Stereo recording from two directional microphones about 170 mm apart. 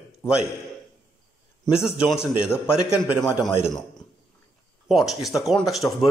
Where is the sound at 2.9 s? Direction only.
5° right (ahead or behind).